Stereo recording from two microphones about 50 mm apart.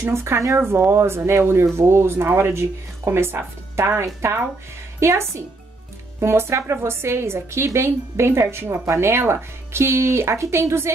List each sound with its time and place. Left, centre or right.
0.0 s a woman's voice: right